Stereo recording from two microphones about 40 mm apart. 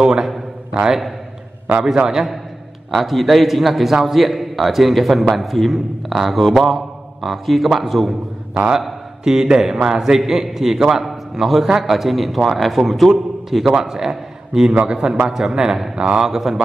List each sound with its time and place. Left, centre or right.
0.0 s a sound: centre
2.9 s a man's voice: centre
8.7 s a man's voice: centre